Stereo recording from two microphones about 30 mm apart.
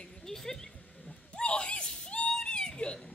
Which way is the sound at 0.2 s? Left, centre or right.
Centre.